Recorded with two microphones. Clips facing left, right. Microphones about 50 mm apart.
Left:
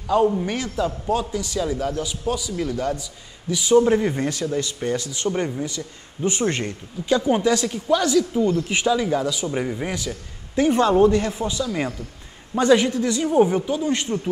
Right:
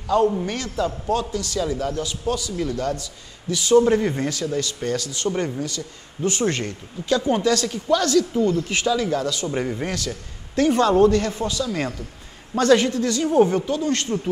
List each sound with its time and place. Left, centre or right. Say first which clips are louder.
0.0 s a man's voice: even; centre
4.2 s a man's voice: left 1 dB; left; by 9.8 s centre
9.8 s a man's voice: even; centre